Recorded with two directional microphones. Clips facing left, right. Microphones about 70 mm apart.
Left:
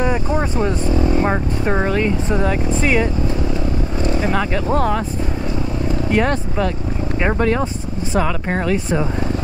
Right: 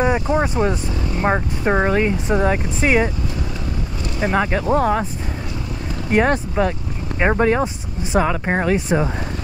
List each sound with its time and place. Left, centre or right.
0.3 s speech: centre
0.9 s vehicle: left
1.2 s speech: centre
4.2 s speech: right
6.1 s speech: centre